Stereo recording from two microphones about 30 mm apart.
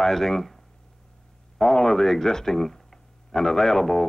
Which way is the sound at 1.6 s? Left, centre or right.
Centre.